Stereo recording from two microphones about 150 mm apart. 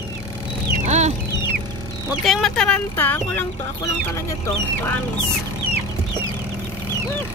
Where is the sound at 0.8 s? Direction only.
50° right (ahead or behind).